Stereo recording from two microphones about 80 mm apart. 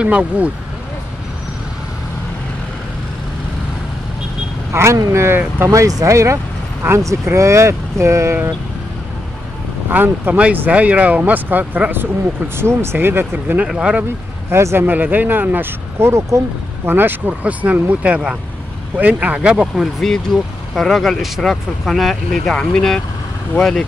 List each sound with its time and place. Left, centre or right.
0.0 s speech: centre
4.7 s speech: right
9.8 s speech: right
13.7 s speech: centre
14.5 s speech: right
16.8 s speech: right; by 23.0 s centre